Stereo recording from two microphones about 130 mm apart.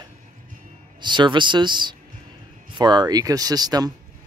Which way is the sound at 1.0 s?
35° right (ahead or behind).